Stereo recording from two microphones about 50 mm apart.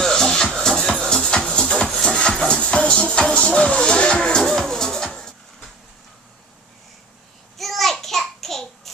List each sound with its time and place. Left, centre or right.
0.0 s music: centre
7.5 s child singing: centre